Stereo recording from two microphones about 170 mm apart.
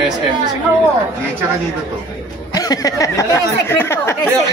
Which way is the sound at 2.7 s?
20° left (ahead or behind).